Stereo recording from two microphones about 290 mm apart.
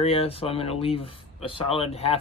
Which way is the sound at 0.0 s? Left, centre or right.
Centre.